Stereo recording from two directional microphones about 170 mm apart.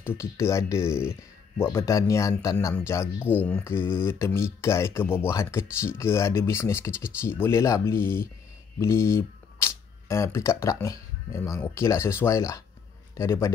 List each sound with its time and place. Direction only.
0.0 s a man's voice: 15° left (ahead or behind)